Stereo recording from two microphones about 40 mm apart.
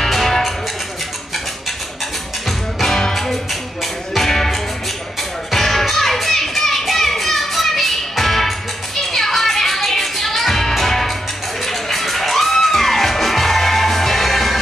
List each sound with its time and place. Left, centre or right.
0.0 s music: centre
2.4 s music: centre